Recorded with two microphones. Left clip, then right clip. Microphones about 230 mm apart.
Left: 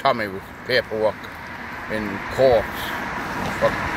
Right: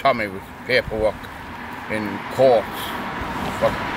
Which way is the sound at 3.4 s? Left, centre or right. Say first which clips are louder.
Even; left.